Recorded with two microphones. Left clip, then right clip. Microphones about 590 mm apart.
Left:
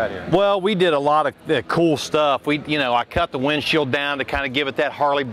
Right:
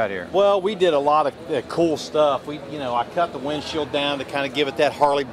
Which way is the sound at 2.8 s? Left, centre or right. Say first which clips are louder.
Even; left.